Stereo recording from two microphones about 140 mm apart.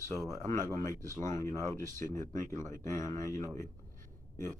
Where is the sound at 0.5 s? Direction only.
20° left (ahead or behind).